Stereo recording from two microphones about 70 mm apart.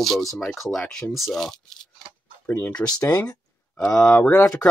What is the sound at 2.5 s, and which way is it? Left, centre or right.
Speech, left.